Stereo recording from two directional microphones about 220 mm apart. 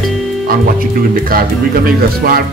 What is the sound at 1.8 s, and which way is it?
Speech, 40° right (ahead or behind).